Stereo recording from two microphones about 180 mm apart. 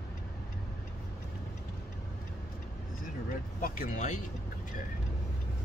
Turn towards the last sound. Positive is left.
turn(degrees=45)  # may be behind; listen again after turning